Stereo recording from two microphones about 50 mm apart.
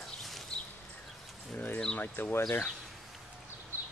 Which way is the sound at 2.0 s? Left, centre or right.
Left.